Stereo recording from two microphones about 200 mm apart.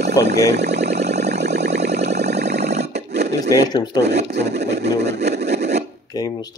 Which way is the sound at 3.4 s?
20° left (ahead or behind).